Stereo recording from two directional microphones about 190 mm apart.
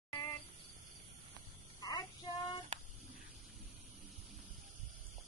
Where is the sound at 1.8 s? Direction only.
20° left (ahead or behind).